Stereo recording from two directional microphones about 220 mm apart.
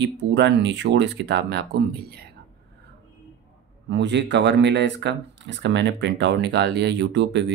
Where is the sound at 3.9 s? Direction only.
55° right (ahead or behind).